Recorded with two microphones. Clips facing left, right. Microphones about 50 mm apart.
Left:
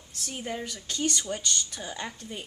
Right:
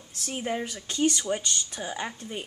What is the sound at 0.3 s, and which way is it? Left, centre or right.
Speech, centre.